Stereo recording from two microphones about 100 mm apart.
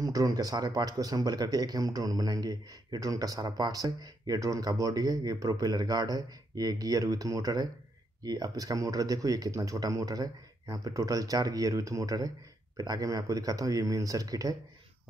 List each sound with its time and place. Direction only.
0.0 s speech: 35° right (ahead or behind)